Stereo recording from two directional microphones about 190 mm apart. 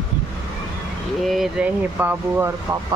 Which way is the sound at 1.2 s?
Centre (ahead or behind).